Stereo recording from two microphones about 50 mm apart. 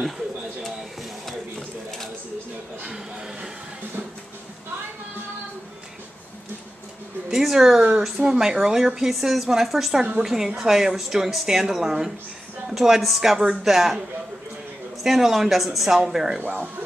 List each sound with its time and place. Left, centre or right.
2.9 s a sound: centre
7.2 s a woman's voice: centre
15.0 s a woman's voice: centre
16.3 s speech: right